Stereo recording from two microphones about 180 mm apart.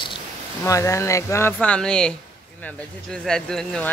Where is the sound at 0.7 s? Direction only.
15° left (ahead or behind).